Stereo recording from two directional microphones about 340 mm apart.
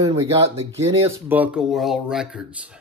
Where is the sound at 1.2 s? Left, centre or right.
Centre.